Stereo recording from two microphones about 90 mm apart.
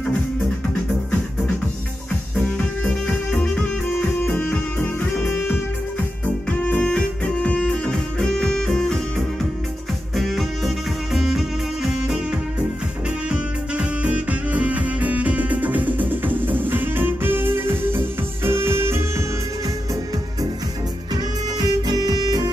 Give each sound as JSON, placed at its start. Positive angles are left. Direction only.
{"t": 2.3, "sound": "music", "side_deg": 20}
{"t": 10.1, "sound": "music", "side_deg": 0}
{"t": 13.3, "sound": "music", "side_deg": -15}
{"t": 21.5, "sound": "music", "side_deg": -45}